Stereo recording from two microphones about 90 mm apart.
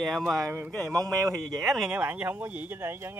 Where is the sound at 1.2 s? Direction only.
40° right (ahead or behind).